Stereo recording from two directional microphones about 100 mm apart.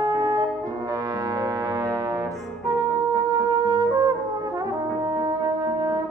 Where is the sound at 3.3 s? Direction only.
45° right (ahead or behind).